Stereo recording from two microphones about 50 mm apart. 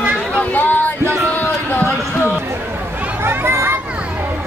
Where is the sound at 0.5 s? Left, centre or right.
Left.